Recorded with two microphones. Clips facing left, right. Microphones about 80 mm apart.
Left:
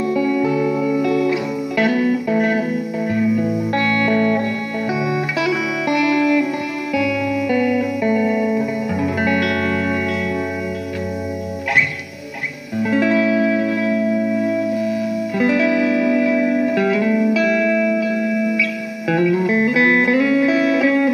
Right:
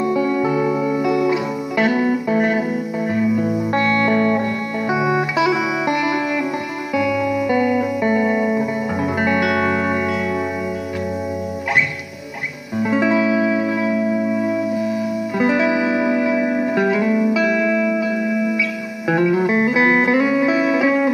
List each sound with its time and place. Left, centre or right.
0.0 s music: right
12.7 s music: right